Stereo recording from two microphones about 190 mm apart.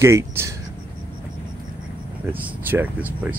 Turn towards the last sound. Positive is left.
turn(degrees=-10)  # may be behind; listen again after turning